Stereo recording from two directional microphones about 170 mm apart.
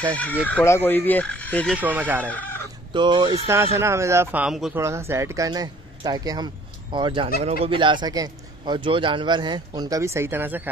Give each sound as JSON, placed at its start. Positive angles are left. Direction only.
{"t": 0.0, "sound": "speech", "side_deg": 10}
{"t": 1.7, "sound": "speech", "side_deg": -10}
{"t": 2.2, "sound": "chicken", "side_deg": 10}
{"t": 2.9, "sound": "speech", "side_deg": -25}
{"t": 3.7, "sound": "speech", "side_deg": -15}
{"t": 4.7, "sound": "speech", "side_deg": -15}